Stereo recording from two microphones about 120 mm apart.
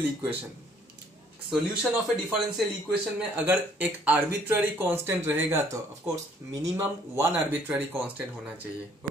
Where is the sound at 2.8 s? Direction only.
15° right (ahead or behind); by 6.6 s 30° right (ahead or behind).